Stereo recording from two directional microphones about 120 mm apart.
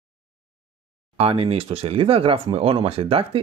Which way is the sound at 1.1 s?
50° right (ahead or behind).